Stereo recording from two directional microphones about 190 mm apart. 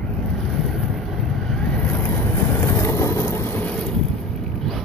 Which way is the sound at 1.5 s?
5° left (ahead or behind).